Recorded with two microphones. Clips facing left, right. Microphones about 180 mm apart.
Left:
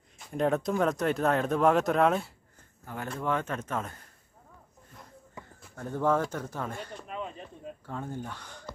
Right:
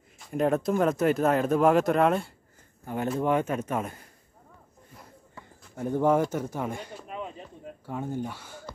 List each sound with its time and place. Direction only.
0.2 s speech: centre (ahead or behind)
2.8 s speech: 20° right (ahead or behind)
5.4 s a sound: 15° left (ahead or behind)
5.8 s speech: 15° right (ahead or behind)